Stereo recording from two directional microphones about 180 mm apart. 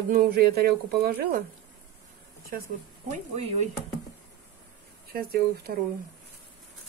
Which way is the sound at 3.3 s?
35° right (ahead or behind).